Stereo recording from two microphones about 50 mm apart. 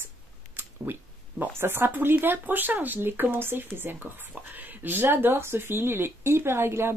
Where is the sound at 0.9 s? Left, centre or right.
Right.